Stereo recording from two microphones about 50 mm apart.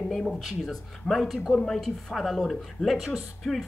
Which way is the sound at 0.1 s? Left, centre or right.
Centre.